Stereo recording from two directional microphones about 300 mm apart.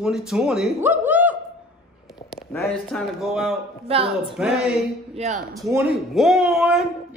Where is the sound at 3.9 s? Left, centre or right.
Centre.